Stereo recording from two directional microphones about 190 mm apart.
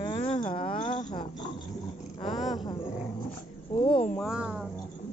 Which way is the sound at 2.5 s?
20° left (ahead or behind).